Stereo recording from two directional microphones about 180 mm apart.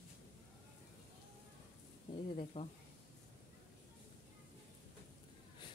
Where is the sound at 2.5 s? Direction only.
35° left (ahead or behind).